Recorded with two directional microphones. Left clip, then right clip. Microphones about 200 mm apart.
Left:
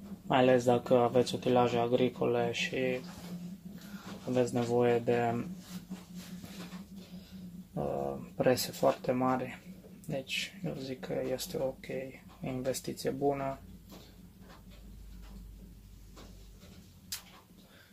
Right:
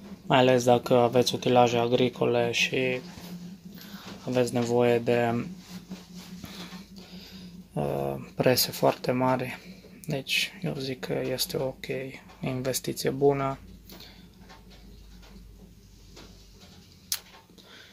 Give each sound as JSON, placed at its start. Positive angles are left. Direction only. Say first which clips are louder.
{"t": 0.3, "sound": "speech", "louder": "right 5 dB", "side_deg": -40}
{"t": 4.3, "sound": "speech", "louder": "right 5 dB", "side_deg": -45}
{"t": 7.7, "sound": "speech", "louder": "right 5 dB", "side_deg": -45}